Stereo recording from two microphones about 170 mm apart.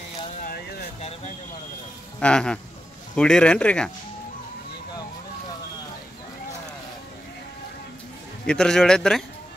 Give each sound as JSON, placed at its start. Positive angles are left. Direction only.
{"t": 0.4, "sound": "a sound", "side_deg": 60}
{"t": 2.1, "sound": "a man's voice", "side_deg": 5}
{"t": 8.5, "sound": "a man's voice", "side_deg": 5}